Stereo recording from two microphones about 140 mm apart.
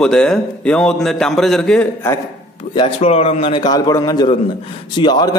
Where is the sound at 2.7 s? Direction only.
45° left (ahead or behind).